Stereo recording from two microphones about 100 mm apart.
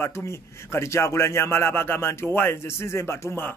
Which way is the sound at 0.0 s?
30° left (ahead or behind).